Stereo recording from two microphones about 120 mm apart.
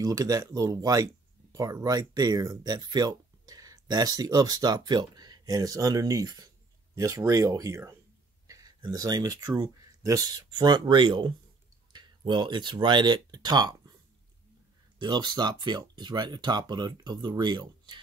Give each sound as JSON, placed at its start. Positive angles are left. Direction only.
{"t": 0.0, "sound": "speech", "side_deg": -30}
{"t": 15.0, "sound": "speech", "side_deg": -40}